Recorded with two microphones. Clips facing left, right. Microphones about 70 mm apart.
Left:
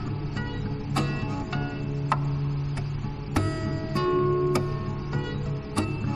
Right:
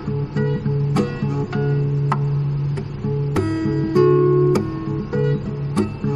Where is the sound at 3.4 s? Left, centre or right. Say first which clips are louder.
Right 7 dB; right.